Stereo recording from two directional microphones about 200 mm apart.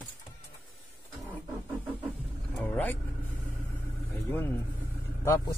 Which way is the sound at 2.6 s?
10° left (ahead or behind).